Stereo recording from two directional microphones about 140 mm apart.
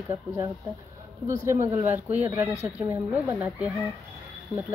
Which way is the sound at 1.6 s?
15° right (ahead or behind).